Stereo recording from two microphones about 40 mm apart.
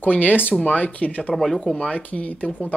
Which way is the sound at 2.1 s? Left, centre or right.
Left.